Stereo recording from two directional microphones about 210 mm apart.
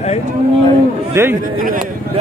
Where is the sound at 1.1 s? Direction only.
10° right (ahead or behind).